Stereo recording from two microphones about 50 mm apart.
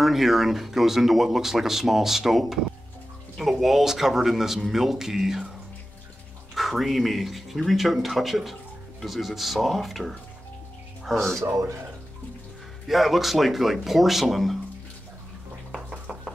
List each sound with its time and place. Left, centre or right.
0.0 s speech: centre
6.5 s speech: centre
11.3 s a man's voice: right
12.8 s speech: centre